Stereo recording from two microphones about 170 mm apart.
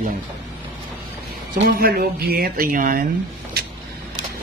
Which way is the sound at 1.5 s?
60° right (ahead or behind).